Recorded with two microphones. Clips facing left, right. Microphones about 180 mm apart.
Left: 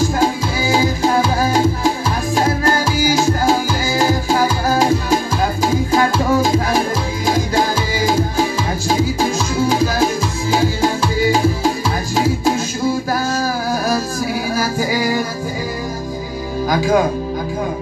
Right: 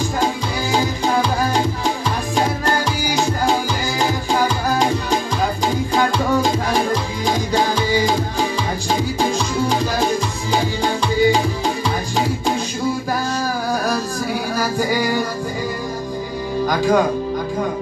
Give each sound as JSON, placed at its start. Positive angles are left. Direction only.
{"t": 0.2, "sound": "music", "side_deg": 5}
{"t": 14.5, "sound": "music", "side_deg": 5}
{"t": 16.6, "sound": "music", "side_deg": 5}